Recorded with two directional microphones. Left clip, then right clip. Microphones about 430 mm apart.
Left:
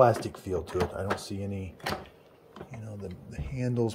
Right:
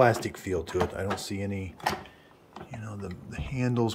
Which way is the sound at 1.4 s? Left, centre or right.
Centre.